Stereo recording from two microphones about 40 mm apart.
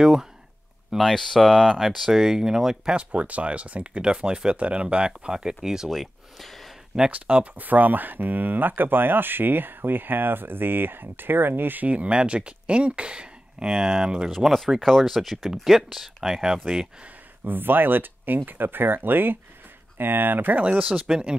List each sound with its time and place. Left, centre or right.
0.0 s speech: centre
1.1 s speech: centre
1.7 s speech: centre
3.0 s speech: right; by 5.9 s centre
5.9 s speech: centre
7.1 s speech: right
11.9 s speech: right; by 14.6 s centre
14.8 s speech: centre
17.5 s speech: right
20.5 s speech: right